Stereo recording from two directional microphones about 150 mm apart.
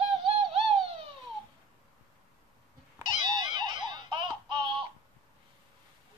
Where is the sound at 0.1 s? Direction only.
40° right (ahead or behind).